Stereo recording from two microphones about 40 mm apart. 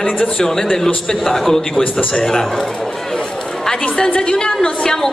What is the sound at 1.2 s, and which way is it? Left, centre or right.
Speech, centre.